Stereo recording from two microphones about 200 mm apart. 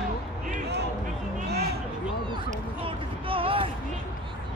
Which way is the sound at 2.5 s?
25° right (ahead or behind).